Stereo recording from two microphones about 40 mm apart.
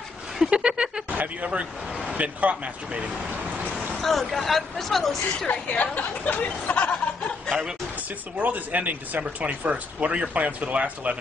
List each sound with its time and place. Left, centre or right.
0.5 s speech: right
1.1 s speech: right
4.0 s speech: centre
5.5 s a woman's voice: left
8.4 s speech: right